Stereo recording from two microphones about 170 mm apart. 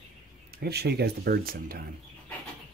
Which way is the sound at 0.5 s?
70° right (ahead or behind).